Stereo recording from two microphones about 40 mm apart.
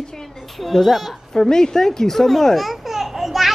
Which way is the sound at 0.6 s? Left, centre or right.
Centre.